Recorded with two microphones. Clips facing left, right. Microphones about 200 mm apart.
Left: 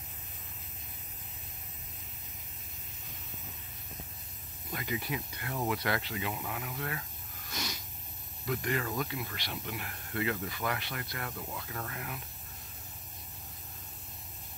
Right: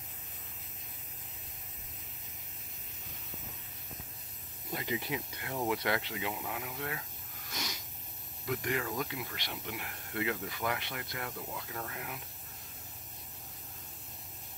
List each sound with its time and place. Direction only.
4.6 s speech: 25° right (ahead or behind)
8.5 s speech: 10° right (ahead or behind)